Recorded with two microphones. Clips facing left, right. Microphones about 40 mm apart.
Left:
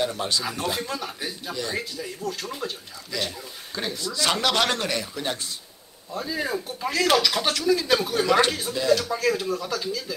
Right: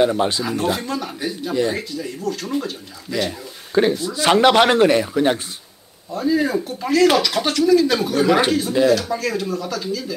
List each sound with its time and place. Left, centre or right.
0.0 s speech: right
0.4 s speech: centre
1.5 s speech: right
1.8 s speech: centre
3.1 s speech: centre
6.1 s speech: centre